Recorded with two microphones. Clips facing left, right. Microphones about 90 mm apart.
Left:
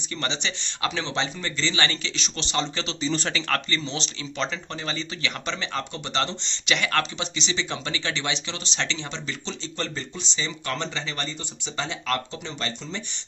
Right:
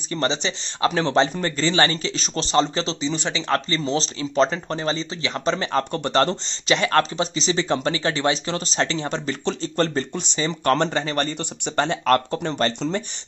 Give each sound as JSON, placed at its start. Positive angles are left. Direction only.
{"t": 0.1, "sound": "speech", "side_deg": -35}
{"t": 3.0, "sound": "speech", "side_deg": -15}
{"t": 3.8, "sound": "speech", "side_deg": -35}